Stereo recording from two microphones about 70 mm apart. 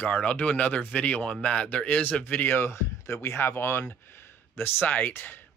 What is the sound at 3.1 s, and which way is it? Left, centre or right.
Speech, left.